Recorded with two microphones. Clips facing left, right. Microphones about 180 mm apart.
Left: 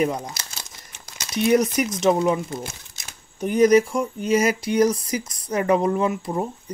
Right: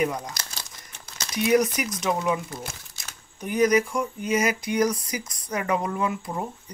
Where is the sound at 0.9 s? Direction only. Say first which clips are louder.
Left 3 dB; 25° left (ahead or behind).